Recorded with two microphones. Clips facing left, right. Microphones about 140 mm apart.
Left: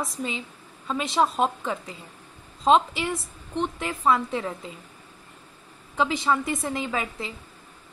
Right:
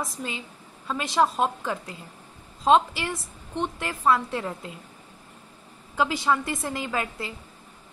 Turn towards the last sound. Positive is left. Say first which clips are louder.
# even
turn(degrees=0)  # may be behind; listen again after turning